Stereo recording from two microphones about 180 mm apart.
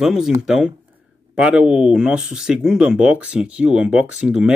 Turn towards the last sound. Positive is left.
turn(degrees=-5)  # may be behind; listen again after turning